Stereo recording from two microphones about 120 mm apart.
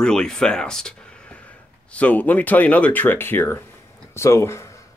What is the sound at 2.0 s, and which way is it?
Speech, 15° left (ahead or behind).